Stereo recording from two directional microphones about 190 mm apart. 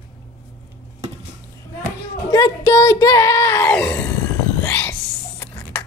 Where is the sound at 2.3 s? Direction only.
20° left (ahead or behind).